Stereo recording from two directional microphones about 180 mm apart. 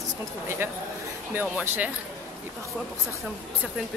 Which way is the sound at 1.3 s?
10° right (ahead or behind).